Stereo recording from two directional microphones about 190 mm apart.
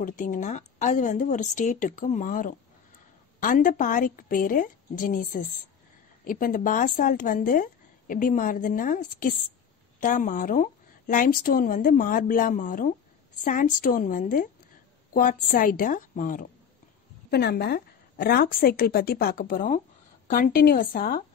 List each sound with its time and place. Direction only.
0.0 s a woman's voice: 45° left (ahead or behind)
17.3 s speech: 60° left (ahead or behind)